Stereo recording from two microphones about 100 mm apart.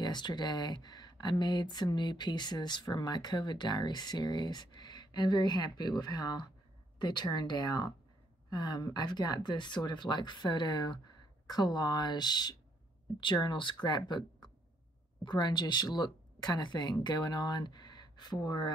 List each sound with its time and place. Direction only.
0.0 s speech: 45° left (ahead or behind)